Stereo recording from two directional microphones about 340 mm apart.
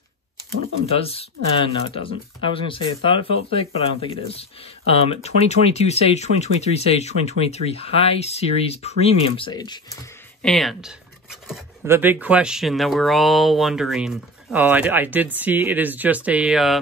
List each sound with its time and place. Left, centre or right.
0.9 s speech: centre
10.4 s speech: centre